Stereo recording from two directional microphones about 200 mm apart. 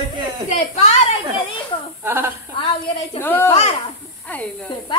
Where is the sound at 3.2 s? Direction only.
10° left (ahead or behind).